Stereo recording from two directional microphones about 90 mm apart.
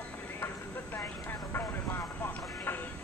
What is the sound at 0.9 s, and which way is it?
Vehicle, 25° left (ahead or behind).